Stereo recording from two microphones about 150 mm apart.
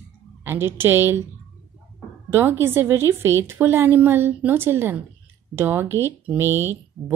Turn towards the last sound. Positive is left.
turn(degrees=-15)  # may be behind; listen again after turning